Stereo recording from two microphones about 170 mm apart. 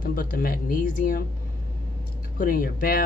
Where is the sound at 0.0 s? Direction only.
55° left (ahead or behind).